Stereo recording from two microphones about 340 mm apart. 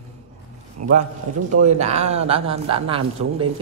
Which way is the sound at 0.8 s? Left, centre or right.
Right.